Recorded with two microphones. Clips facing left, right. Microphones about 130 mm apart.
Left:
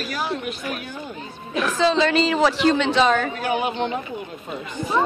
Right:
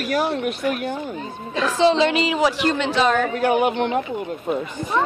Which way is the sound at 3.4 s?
55° right (ahead or behind).